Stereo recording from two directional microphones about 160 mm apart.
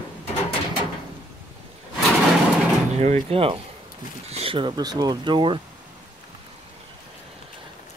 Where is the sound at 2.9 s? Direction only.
45° right (ahead or behind); by 5.5 s 30° right (ahead or behind).